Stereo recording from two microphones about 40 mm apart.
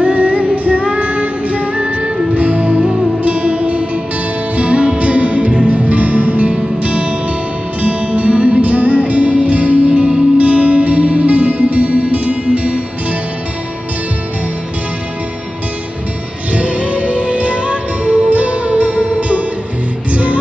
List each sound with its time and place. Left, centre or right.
0.0 s music: right
16.5 s music: right